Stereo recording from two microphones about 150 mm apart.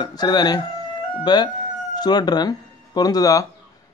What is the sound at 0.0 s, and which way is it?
Speech, 25° left (ahead or behind).